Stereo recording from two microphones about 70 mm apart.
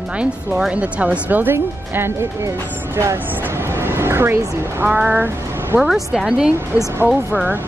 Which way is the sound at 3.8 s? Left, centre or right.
Right.